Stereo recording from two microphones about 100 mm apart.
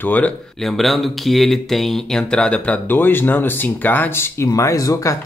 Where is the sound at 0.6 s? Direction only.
Centre (ahead or behind).